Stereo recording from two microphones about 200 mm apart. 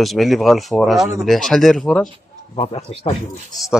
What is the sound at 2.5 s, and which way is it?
Speech, 30° left (ahead or behind).